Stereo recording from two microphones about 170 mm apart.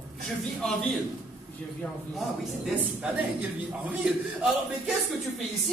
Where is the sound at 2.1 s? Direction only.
Centre (ahead or behind).